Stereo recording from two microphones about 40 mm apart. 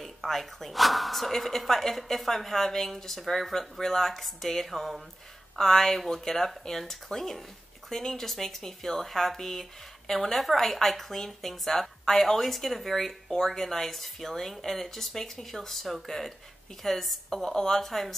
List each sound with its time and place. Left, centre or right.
0.0 s speech: centre